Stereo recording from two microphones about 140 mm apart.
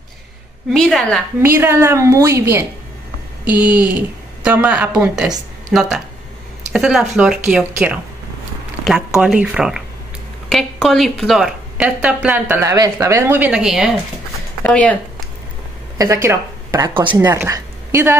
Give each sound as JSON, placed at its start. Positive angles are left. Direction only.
{"t": 0.7, "sound": "a woman's voice", "side_deg": 5}
{"t": 1.4, "sound": "a woman's voice", "side_deg": -20}
{"t": 12.6, "sound": "a woman's voice", "side_deg": -25}
{"t": 13.5, "sound": "a woman's voice", "side_deg": -5}
{"t": 14.6, "sound": "speech", "side_deg": 10}
{"t": 16.0, "sound": "speech", "side_deg": -20}